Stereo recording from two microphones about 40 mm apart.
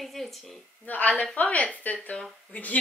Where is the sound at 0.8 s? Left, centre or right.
Left.